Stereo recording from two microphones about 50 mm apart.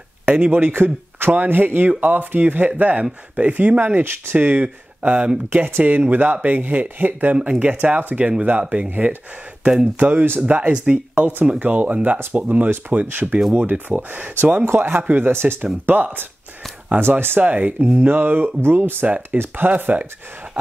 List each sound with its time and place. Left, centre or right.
0.2 s a sound: right
0.5 s speech: right
4.4 s speech: right
7.3 s speech: right
10.0 s speech: right
10.4 s speech: right
14.6 s speech: right
15.6 s speech: right